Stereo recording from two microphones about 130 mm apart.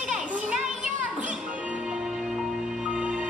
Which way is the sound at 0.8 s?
70° right (ahead or behind).